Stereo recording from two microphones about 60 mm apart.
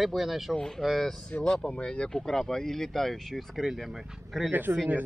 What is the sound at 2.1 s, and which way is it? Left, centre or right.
Speech, centre.